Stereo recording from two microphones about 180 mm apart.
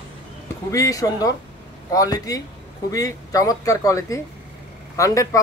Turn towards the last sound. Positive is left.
turn(degrees=15)  # may be behind; listen again after turning